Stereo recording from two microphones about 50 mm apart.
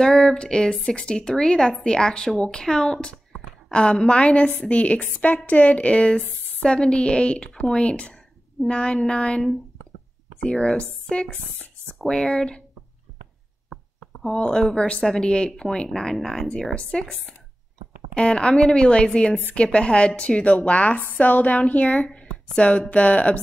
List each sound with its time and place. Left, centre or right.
0.0 s a woman's voice: centre
12.0 s speech: centre
13.9 s speech: centre
18.1 s speech: centre
19.0 s speech: centre
19.3 s a woman's voice: left
22.0 s a sound: left
22.6 s a woman's voice: left